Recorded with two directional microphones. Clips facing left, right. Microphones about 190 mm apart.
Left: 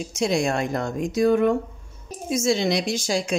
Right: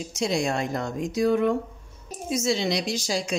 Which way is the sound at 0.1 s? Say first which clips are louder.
Left 3 dB; 55° left (ahead or behind).